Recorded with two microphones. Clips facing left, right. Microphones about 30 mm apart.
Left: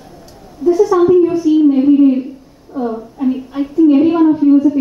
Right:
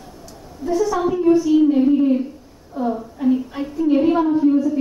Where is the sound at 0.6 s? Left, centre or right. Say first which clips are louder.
Left 8 dB; centre.